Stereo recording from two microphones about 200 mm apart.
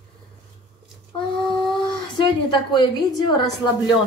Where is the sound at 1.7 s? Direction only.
25° left (ahead or behind).